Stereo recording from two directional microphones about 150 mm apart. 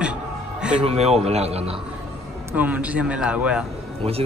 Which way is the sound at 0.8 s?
45° right (ahead or behind).